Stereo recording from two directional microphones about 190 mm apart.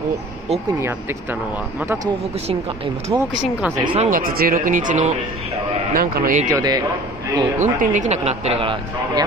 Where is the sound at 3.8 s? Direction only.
25° right (ahead or behind).